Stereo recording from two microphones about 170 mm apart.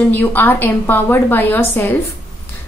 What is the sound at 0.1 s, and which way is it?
A woman's voice, 10° left (ahead or behind).